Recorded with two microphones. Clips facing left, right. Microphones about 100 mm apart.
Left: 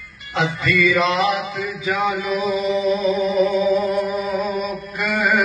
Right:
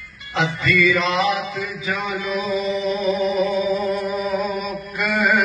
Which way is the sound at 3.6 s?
35° left (ahead or behind).